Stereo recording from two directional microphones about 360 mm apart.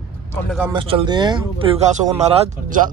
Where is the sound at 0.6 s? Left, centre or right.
Centre.